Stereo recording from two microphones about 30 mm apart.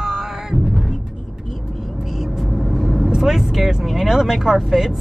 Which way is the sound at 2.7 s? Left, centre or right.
Centre.